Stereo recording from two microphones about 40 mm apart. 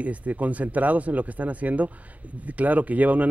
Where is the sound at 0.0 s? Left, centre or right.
Right.